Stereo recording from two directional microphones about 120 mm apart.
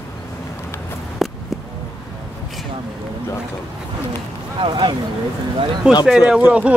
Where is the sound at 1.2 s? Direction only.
Centre (ahead or behind).